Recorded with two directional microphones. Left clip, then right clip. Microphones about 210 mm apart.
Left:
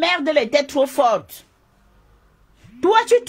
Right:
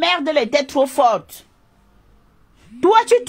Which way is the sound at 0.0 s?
20° right (ahead or behind).